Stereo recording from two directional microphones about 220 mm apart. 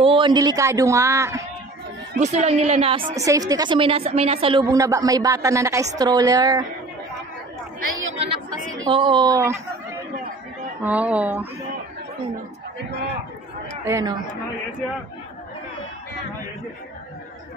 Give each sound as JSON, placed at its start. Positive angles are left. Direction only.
{"t": 0.0, "sound": "a woman's voice", "side_deg": -20}
{"t": 2.1, "sound": "speech", "side_deg": -30}
{"t": 3.2, "sound": "a woman's voice", "side_deg": -15}
{"t": 8.8, "sound": "speech", "side_deg": -20}
{"t": 10.8, "sound": "a woman's voice", "side_deg": -5}
{"t": 13.8, "sound": "a woman's voice", "side_deg": -15}